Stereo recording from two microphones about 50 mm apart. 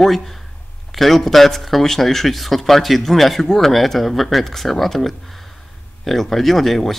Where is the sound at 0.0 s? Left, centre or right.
Centre.